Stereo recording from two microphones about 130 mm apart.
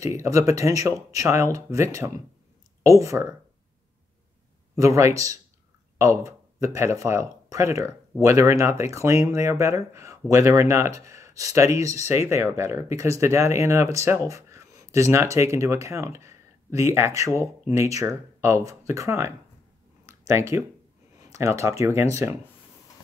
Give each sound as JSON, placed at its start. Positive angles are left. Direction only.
{"t": 0.0, "sound": "speech", "side_deg": -25}
{"t": 4.7, "sound": "speech", "side_deg": -25}